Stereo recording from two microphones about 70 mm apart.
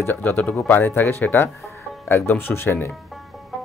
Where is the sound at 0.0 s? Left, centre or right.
Left.